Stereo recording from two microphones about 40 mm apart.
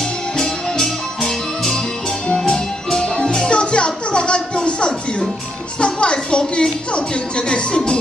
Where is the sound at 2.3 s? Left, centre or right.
Centre.